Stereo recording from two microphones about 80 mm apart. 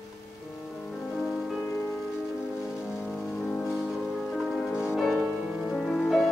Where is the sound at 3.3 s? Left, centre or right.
Centre.